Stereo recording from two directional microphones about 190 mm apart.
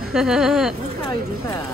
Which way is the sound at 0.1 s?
5° right (ahead or behind).